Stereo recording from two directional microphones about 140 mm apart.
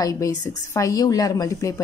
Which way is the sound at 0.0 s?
25° left (ahead or behind).